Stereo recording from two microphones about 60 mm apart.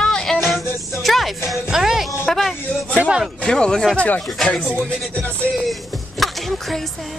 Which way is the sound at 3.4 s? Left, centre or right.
Centre.